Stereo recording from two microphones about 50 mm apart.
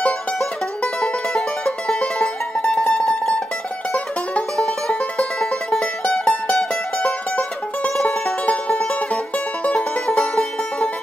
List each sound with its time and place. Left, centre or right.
1.0 s music: centre
5.7 s music: centre